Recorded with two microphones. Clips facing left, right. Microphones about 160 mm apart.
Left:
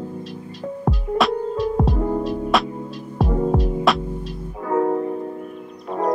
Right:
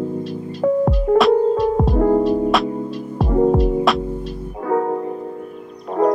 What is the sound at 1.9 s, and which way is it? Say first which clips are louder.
Music: right 7 dB; 65° right (ahead or behind).